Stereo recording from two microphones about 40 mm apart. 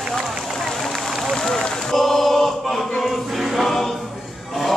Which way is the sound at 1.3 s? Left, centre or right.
Centre.